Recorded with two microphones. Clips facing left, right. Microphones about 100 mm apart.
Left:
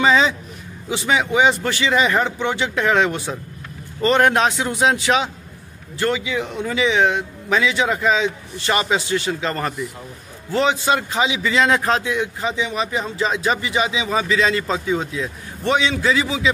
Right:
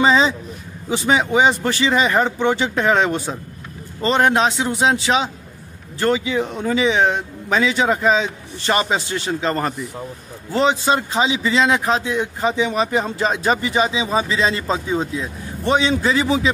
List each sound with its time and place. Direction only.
0.0 s a man's voice: 30° right (ahead or behind)
12.0 s speech: 30° right (ahead or behind)